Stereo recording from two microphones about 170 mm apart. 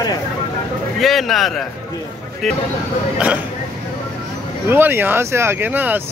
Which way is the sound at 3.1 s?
10° right (ahead or behind).